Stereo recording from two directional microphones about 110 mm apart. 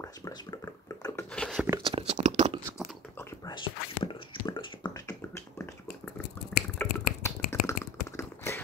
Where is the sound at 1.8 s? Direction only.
65° right (ahead or behind).